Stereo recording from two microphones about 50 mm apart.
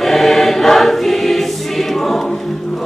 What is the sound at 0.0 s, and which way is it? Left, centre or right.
Choir, centre.